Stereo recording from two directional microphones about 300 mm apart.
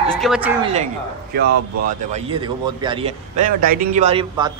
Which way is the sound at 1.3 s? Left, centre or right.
Right.